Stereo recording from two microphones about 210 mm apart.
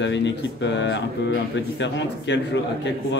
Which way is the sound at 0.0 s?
55° left (ahead or behind).